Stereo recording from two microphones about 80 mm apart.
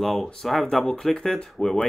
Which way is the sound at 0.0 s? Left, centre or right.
Centre.